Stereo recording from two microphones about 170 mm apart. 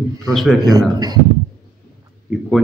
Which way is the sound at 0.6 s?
25° right (ahead or behind).